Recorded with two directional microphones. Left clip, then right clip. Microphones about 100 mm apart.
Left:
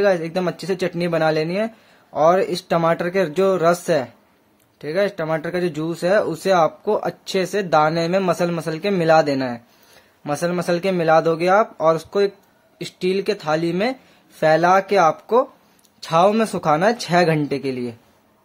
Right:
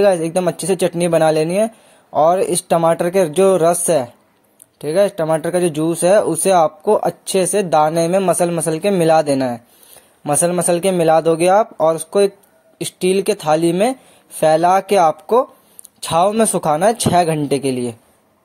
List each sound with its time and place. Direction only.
0.0 s speech: 35° right (ahead or behind)
16.0 s speech: 50° right (ahead or behind)
16.3 s speech: 40° right (ahead or behind)